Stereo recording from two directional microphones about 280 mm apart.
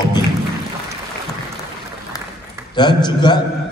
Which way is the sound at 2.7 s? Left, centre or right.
Centre.